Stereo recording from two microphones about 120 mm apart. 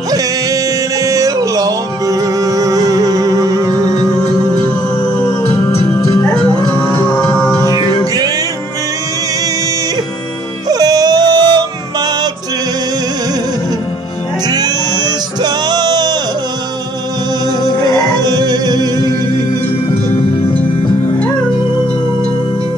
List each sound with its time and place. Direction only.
1.0 s music: 30° right (ahead or behind)
7.1 s music: 10° left (ahead or behind)
7.6 s music: 30° right (ahead or behind)
10.7 s yodeling: 35° right (ahead or behind)
14.5 s music: 35° right (ahead or behind)
18.1 s music: 35° right (ahead or behind)